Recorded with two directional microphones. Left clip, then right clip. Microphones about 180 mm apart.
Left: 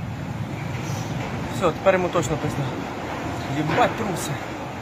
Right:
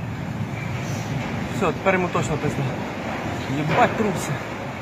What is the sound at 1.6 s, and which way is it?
Speech, 30° left (ahead or behind).